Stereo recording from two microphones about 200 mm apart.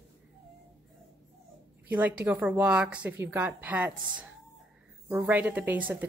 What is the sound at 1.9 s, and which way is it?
A woman's voice, 10° right (ahead or behind).